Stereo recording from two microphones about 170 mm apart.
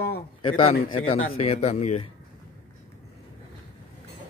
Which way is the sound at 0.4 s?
35° left (ahead or behind).